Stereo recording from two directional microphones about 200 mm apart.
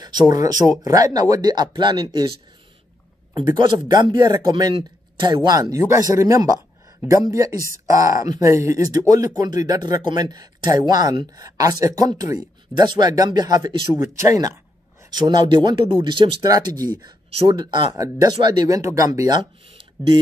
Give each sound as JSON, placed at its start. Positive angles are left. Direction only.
{"t": 0.0, "sound": "speech", "side_deg": -20}
{"t": 3.4, "sound": "speech", "side_deg": -20}